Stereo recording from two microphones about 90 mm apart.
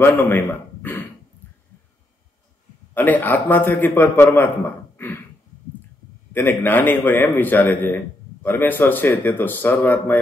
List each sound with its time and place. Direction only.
0.0 s a man's voice: 25° left (ahead or behind)
2.9 s a man's voice: 20° left (ahead or behind)
4.9 s a sound: 25° left (ahead or behind)
6.3 s a man's voice: 20° left (ahead or behind)